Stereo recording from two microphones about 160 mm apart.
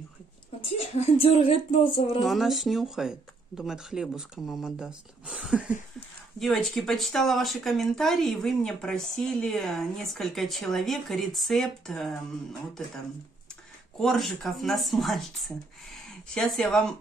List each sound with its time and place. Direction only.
0.6 s speech: 35° left (ahead or behind)
2.1 s speech: centre (ahead or behind)
13.9 s speech: centre (ahead or behind)